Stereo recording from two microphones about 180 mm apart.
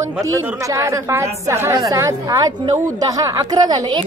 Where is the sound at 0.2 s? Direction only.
15° right (ahead or behind).